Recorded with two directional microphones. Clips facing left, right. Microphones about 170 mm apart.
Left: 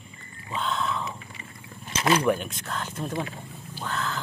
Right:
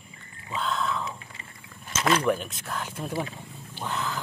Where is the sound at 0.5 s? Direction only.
Centre (ahead or behind).